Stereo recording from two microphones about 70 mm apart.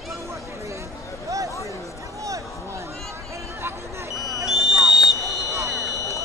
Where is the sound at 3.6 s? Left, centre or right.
Right.